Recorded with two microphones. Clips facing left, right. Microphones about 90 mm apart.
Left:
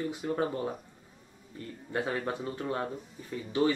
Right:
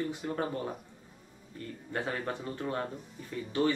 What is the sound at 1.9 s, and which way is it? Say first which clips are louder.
Speech: left 3 dB; 15° left (ahead or behind).